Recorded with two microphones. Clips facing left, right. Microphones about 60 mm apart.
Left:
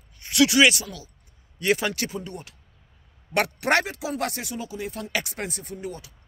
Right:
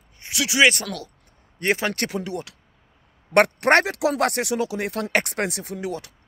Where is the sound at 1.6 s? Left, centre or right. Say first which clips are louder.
Even; right.